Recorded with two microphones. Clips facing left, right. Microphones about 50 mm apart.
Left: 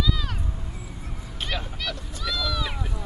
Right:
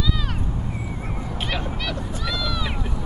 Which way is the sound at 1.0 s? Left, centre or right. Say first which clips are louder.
Right 9 dB; right.